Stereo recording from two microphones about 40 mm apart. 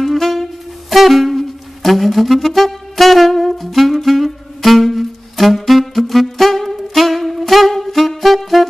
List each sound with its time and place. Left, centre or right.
0.0 s saxophone: centre